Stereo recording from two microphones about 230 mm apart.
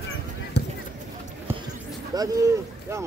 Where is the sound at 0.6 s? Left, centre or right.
Left.